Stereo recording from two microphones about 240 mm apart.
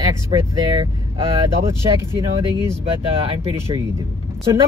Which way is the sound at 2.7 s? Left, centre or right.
Right.